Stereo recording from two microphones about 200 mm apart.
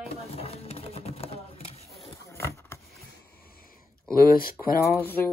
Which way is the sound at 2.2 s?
15° left (ahead or behind).